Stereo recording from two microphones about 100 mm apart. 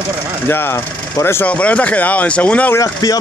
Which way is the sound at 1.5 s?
15° left (ahead or behind).